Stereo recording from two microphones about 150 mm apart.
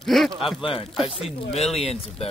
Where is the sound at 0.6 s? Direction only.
35° left (ahead or behind).